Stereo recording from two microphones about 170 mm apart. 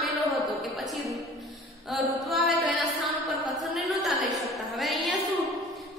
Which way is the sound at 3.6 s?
Centre (ahead or behind).